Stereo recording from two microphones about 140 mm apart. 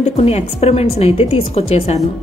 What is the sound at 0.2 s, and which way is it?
A woman's voice, 50° left (ahead or behind).